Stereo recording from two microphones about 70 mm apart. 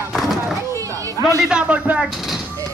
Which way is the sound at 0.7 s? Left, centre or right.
Right.